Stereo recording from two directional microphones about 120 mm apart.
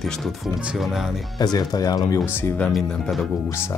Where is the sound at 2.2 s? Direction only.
20° left (ahead or behind).